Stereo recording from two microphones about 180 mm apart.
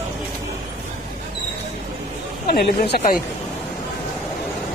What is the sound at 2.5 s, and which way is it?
Speech, 65° left (ahead or behind).